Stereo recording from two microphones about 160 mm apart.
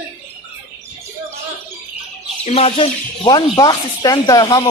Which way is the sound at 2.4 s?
40° left (ahead or behind).